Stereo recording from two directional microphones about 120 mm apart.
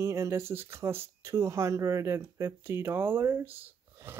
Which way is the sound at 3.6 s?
20° right (ahead or behind).